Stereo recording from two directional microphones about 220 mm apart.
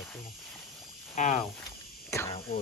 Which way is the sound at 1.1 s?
35° left (ahead or behind).